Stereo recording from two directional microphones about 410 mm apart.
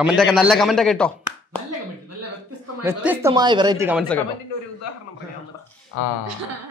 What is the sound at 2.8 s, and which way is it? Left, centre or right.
Speech, centre.